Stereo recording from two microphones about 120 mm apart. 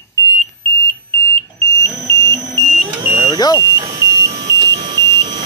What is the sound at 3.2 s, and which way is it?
Vehicle, 30° left (ahead or behind).